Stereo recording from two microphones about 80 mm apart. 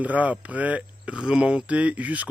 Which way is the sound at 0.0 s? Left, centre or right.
Centre.